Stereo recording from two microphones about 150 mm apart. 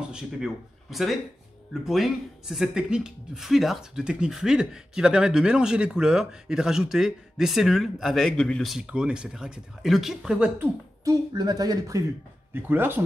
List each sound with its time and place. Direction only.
0.1 s speech: centre (ahead or behind)
11.1 s speech: 25° right (ahead or behind)
12.5 s speech: 15° right (ahead or behind)